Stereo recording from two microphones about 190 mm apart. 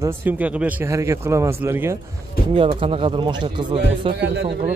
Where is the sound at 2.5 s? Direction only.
30° right (ahead or behind).